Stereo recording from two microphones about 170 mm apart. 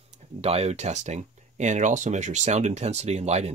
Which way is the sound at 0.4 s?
35° right (ahead or behind).